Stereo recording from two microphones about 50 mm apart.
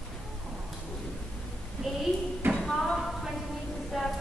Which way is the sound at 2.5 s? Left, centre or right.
Centre.